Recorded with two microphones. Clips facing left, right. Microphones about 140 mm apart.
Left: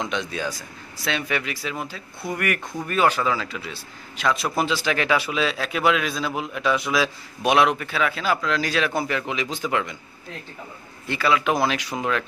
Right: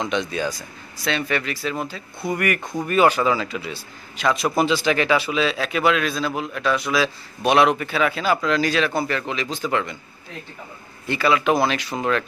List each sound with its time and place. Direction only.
0.0 s a man's voice: centre (ahead or behind)
2.6 s speech: 20° right (ahead or behind)
2.9 s a man's voice: 5° right (ahead or behind)
11.1 s a man's voice: centre (ahead or behind)